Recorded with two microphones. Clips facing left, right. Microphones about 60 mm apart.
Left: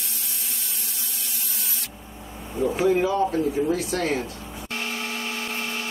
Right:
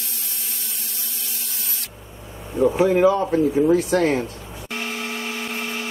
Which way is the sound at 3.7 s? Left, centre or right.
Right.